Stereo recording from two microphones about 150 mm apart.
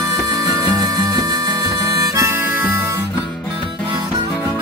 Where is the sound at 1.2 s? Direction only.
20° right (ahead or behind).